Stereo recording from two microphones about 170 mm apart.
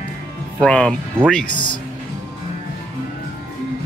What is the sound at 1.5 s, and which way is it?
Speech, 30° left (ahead or behind).